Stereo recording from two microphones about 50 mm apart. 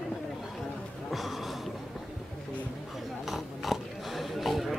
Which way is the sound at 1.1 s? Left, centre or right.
Centre.